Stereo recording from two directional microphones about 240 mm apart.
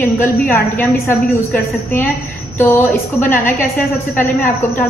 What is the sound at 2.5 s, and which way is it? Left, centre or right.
A woman's voice, centre.